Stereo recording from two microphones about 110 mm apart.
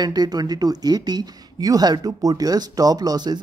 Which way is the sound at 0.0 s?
40° right (ahead or behind).